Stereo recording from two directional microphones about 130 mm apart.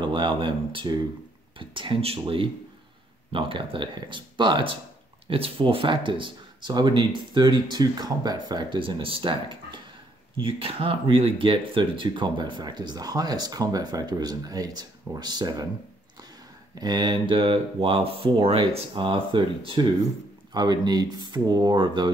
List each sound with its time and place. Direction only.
0.0 s speech: 40° right (ahead or behind)
16.7 s speech: 30° right (ahead or behind)